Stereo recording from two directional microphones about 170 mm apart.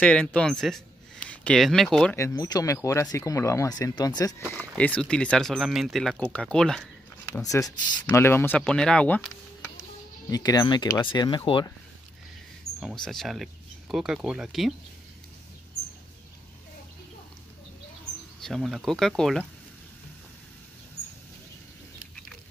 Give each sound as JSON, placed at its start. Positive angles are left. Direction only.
{"t": 0.0, "sound": "speech", "side_deg": 5}
{"t": 2.1, "sound": "speech", "side_deg": 20}
{"t": 4.6, "sound": "speech", "side_deg": 10}
{"t": 7.3, "sound": "speech", "side_deg": 20}
{"t": 10.3, "sound": "speech", "side_deg": 25}
{"t": 12.8, "sound": "speech", "side_deg": 5}
{"t": 18.4, "sound": "speech", "side_deg": 0}